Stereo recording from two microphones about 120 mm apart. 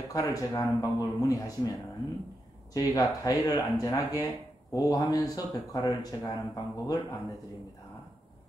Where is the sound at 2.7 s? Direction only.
30° left (ahead or behind).